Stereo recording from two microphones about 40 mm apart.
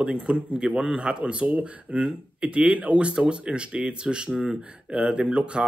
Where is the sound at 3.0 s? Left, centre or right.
Right.